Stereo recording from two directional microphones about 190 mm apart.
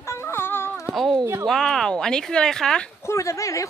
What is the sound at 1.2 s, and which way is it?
Speech, 15° right (ahead or behind).